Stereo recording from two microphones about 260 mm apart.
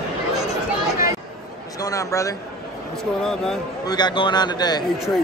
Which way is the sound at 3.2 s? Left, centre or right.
Centre.